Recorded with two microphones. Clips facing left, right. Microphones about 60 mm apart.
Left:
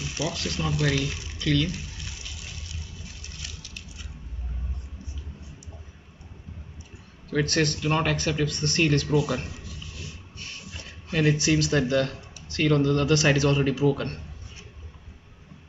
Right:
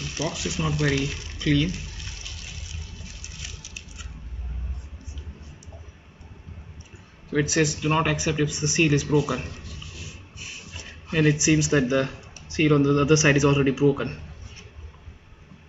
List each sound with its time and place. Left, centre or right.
0.0 s speech: centre
3.4 s patter: centre
7.2 s speech: centre
9.5 s a sound: centre
10.3 s a sound: centre
10.6 s speech: centre